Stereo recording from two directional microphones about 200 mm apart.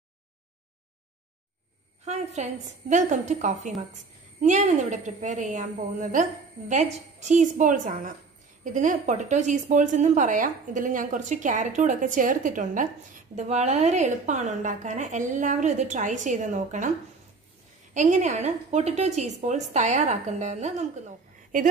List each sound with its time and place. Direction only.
2.0 s a woman's voice: 35° right (ahead or behind)
17.9 s a woman's voice: 35° right (ahead or behind)